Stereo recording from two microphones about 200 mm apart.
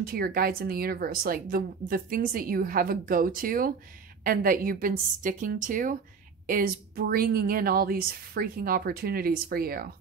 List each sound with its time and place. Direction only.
0.0 s speech: 45° right (ahead or behind)